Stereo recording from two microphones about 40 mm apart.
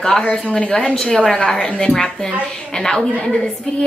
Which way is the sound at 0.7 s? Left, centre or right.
Centre.